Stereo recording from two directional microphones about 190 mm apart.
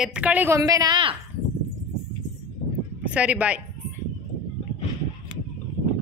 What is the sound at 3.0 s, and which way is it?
Speech, 5° right (ahead or behind).